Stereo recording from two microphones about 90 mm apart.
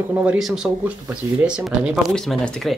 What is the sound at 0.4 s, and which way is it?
Speech, centre (ahead or behind).